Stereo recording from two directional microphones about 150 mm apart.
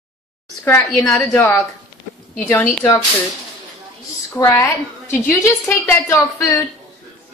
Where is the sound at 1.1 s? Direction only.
15° left (ahead or behind).